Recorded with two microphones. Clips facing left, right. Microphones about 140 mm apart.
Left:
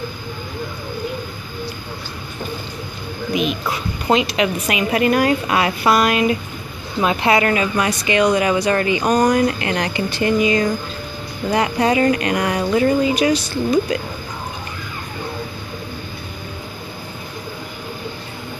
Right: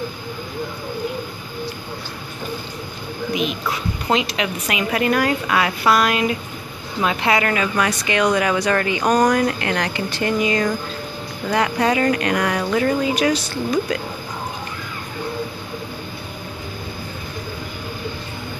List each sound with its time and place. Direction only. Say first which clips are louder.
4.1 s speech: left 4 dB; 10° left (ahead or behind); by 7.6 s 25° left (ahead or behind)
7.7 s speech: left 2 dB; 10° left (ahead or behind)
9.3 s speech: left 2 dB; 15° left (ahead or behind)